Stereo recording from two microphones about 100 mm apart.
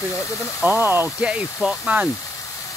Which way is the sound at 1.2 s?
10° right (ahead or behind).